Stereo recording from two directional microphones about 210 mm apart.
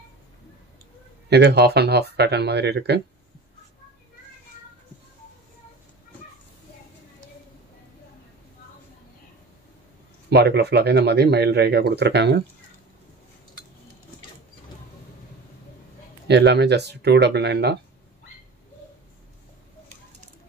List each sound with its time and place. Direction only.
1.3 s speech: 50° right (ahead or behind)
10.3 s speech: 50° right (ahead or behind)
16.3 s speech: 55° right (ahead or behind)